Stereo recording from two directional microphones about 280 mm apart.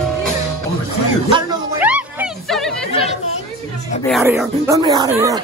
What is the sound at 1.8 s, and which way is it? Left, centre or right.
Music, centre.